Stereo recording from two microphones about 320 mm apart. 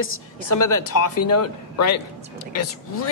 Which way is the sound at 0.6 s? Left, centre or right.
Left.